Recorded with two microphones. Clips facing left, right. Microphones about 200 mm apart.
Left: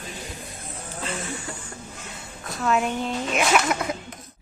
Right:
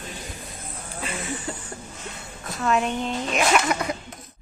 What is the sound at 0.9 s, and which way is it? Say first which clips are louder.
Speech: right 1 dB; 15° right (ahead or behind).